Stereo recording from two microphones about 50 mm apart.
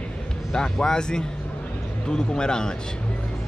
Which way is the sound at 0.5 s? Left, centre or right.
Centre.